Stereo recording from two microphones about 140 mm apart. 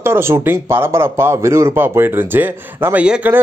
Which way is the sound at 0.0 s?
20° right (ahead or behind).